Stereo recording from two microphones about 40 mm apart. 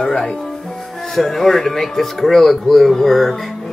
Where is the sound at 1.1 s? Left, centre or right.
Centre.